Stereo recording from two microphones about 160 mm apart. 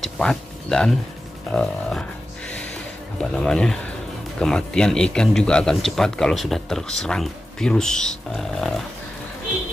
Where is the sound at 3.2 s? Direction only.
5° left (ahead or behind).